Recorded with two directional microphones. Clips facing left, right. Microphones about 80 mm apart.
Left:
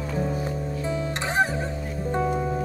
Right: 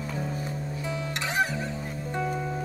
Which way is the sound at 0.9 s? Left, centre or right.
Left.